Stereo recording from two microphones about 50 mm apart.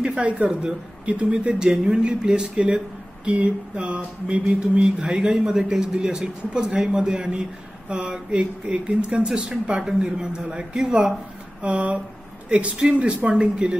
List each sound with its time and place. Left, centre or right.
0.0 s speech: right
0.5 s a sound: centre
11.6 s speech: right